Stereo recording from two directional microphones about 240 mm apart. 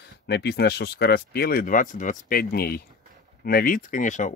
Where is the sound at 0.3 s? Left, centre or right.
Left.